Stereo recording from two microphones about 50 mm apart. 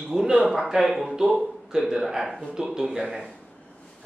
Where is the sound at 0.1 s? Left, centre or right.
Centre.